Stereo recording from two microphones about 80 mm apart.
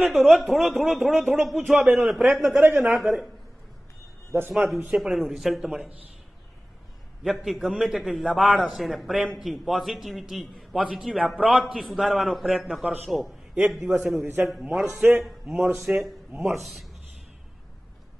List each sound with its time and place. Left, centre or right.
0.0 s a man's voice: centre
2.6 s a man's voice: right
3.0 s speech: centre
4.5 s speech: centre
7.2 s a man's voice: centre
14.2 s a man's voice: right
15.1 s speech: centre